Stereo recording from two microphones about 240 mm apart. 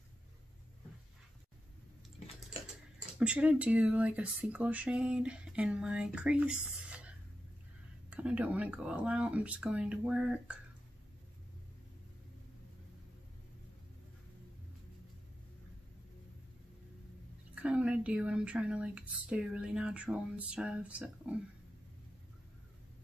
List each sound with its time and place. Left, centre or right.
3.2 s speech: centre
17.6 s speech: centre